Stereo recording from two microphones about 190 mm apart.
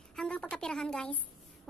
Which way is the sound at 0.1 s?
5° left (ahead or behind).